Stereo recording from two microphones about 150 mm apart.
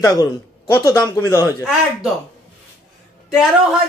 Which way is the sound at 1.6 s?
5° right (ahead or behind).